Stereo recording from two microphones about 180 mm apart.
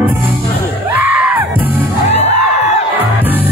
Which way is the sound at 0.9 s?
10° right (ahead or behind).